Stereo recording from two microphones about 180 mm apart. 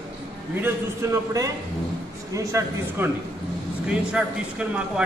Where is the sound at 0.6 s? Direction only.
15° right (ahead or behind).